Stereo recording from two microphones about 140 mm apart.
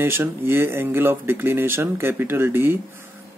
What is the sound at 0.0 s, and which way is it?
Speech, 15° right (ahead or behind).